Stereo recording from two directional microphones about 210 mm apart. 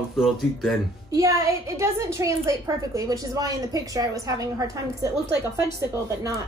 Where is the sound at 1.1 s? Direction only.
15° right (ahead or behind).